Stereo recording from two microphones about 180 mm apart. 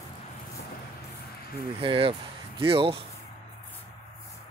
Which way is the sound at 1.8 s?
30° right (ahead or behind).